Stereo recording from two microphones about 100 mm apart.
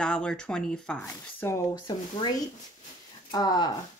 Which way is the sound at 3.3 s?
45° left (ahead or behind).